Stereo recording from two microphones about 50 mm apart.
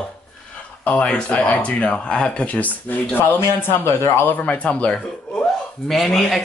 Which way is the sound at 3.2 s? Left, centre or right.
Left.